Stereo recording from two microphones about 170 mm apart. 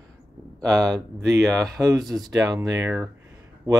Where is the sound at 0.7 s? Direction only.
5° left (ahead or behind).